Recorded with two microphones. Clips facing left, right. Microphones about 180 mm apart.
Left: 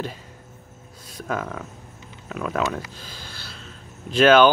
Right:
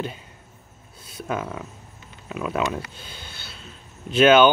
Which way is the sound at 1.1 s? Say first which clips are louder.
Even; 5° right (ahead or behind).